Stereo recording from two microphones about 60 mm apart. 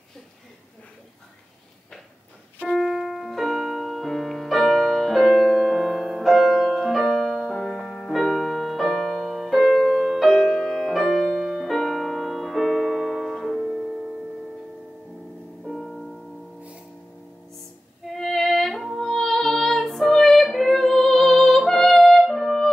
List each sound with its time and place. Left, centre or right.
2.8 s music: centre
11.6 s piano: centre
15.6 s music: centre
18.1 s music: centre